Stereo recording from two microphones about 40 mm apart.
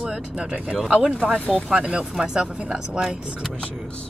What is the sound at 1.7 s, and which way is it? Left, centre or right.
Speech, right.